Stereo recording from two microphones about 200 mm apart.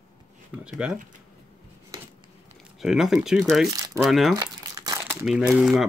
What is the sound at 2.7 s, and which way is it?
Speech, centre (ahead or behind).